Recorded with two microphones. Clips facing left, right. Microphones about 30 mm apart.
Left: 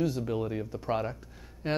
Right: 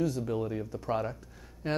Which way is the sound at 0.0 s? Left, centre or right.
Centre.